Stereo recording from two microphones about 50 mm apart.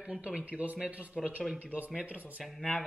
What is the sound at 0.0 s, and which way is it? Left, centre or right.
Speech, right.